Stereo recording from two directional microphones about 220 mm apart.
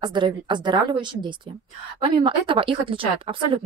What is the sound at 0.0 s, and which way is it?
Speech, 20° right (ahead or behind).